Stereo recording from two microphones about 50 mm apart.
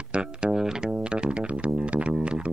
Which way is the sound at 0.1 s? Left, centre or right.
Centre.